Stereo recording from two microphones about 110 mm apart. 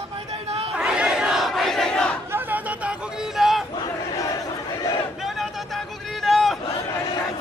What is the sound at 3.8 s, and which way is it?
Crowd, 30° left (ahead or behind).